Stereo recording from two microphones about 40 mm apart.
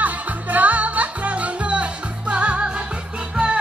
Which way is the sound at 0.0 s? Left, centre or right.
Right.